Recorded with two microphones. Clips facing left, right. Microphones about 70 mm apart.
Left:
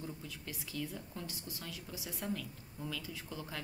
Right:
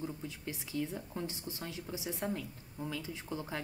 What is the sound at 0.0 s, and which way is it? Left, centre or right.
A woman's voice, right.